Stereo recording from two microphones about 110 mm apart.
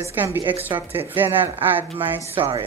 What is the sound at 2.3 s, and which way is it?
Speech, 55° right (ahead or behind).